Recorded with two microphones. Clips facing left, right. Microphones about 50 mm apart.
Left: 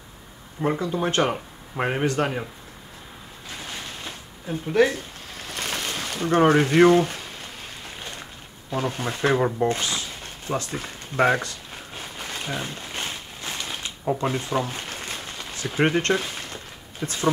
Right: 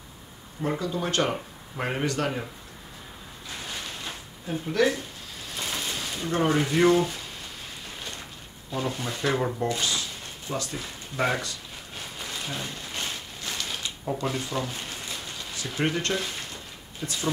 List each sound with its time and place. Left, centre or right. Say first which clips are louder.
0.6 s speech: left 4 dB; left
4.8 s speech: left 4 dB; left
5.5 s speech: left 3 dB; left
8.6 s speech: left 3 dB; left
10.5 s a sound: left 4 dB; left
14.8 s a sound: left 3 dB; left
17.0 s speech: left 5 dB; left